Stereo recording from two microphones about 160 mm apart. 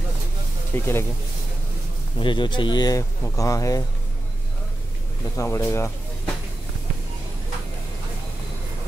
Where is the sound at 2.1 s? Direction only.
30° left (ahead or behind).